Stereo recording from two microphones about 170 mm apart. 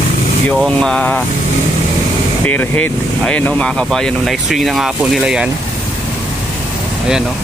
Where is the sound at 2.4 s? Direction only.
10° left (ahead or behind).